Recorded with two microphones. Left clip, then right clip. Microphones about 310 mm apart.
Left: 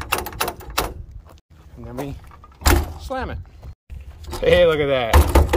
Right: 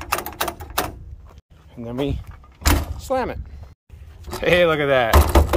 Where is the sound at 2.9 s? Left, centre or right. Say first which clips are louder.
Right 5 dB; centre.